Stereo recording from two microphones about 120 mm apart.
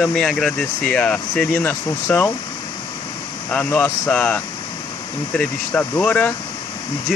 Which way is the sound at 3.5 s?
10° left (ahead or behind).